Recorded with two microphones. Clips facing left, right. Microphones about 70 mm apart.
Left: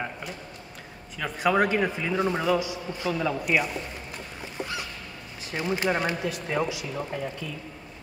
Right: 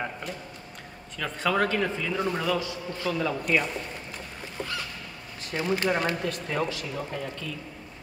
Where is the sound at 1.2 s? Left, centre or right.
Centre.